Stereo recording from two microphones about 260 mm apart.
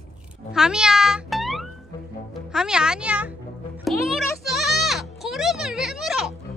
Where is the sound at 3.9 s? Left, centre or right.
Centre.